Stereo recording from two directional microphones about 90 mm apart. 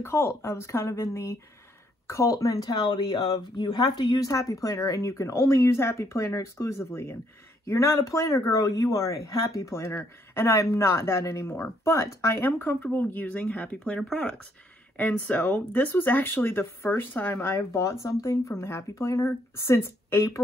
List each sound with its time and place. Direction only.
0.0 s speech: 30° left (ahead or behind)
2.8 s speech: 55° left (ahead or behind); by 17.6 s 20° left (ahead or behind)
17.6 s speech: 35° left (ahead or behind)